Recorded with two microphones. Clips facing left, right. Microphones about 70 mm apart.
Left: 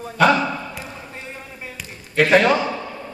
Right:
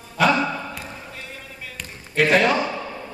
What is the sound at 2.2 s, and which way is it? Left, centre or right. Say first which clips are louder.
Speech: left 3 dB; centre.